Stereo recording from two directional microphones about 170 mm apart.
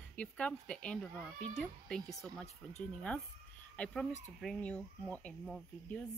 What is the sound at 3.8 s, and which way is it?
Speech, 10° left (ahead or behind).